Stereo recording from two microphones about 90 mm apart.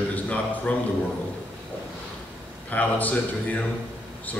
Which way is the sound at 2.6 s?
20° left (ahead or behind).